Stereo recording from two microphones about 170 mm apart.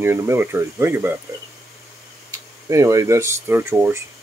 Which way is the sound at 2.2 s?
20° right (ahead or behind).